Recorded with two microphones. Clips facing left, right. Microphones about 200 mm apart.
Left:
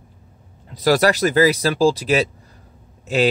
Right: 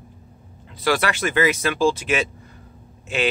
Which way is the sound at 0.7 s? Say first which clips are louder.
Left 6 dB; 40° left (ahead or behind).